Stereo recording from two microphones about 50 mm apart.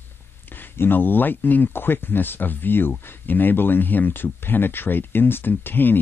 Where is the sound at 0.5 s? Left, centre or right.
Left.